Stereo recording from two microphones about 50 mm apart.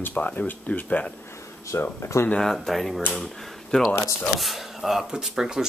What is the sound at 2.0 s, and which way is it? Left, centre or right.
Speech, left.